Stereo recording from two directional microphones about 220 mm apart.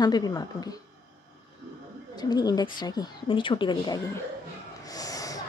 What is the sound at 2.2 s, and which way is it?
A woman's voice, 20° left (ahead or behind).